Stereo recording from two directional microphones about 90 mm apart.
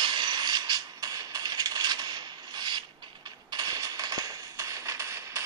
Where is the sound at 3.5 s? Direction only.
45° right (ahead or behind).